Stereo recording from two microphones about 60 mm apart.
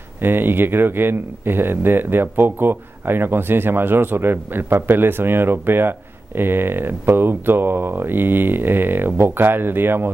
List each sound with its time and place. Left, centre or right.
0.2 s speech: right